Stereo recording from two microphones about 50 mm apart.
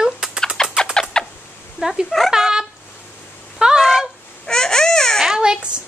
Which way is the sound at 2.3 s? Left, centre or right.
Centre.